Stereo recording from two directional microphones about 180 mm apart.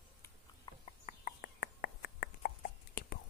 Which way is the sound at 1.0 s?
55° left (ahead or behind).